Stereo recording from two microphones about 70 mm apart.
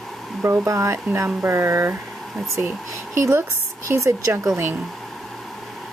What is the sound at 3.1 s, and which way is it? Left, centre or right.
Speech, right.